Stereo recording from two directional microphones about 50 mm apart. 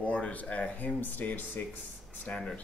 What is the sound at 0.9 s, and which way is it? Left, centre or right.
Speech, left.